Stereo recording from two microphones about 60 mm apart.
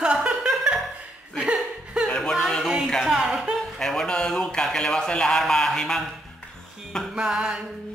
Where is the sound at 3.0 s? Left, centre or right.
Centre.